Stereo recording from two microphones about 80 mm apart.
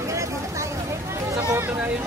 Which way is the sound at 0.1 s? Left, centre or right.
Right.